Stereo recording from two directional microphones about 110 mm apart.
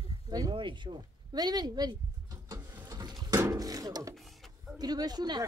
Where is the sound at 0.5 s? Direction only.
50° right (ahead or behind).